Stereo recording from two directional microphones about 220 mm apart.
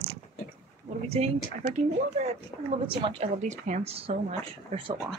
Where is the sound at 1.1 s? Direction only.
30° right (ahead or behind).